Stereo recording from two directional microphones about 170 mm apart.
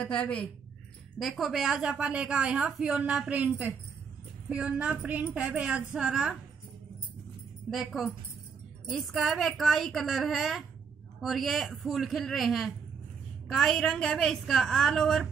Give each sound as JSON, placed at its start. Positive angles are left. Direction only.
{"t": 0.0, "sound": "a woman's voice", "side_deg": 5}
{"t": 7.7, "sound": "a woman's voice", "side_deg": -5}